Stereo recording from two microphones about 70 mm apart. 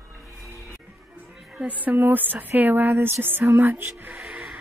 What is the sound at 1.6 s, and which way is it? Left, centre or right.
Speech, right.